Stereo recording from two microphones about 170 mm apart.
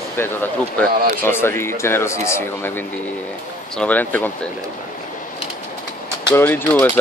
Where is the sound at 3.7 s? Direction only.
10° left (ahead or behind).